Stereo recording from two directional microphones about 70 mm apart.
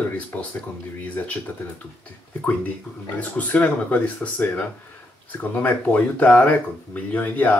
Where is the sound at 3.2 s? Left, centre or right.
Left.